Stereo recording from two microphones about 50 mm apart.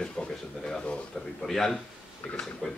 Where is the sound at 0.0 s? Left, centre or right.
Centre.